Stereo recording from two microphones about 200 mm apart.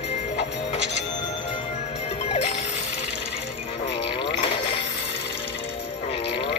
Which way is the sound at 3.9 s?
30° left (ahead or behind).